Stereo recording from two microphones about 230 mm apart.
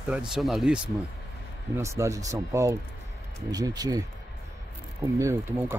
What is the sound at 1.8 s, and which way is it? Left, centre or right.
Speech, centre.